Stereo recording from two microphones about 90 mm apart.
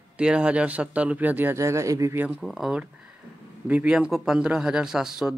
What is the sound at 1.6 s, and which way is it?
Speech, 35° right (ahead or behind).